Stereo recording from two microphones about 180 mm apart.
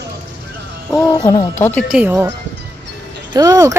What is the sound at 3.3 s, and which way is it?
Speech, 20° right (ahead or behind).